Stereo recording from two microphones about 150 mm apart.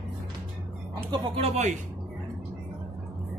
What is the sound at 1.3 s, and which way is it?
Speech, 45° right (ahead or behind).